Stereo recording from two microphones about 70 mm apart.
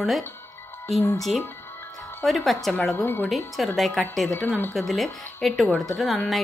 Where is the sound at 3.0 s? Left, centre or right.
Left.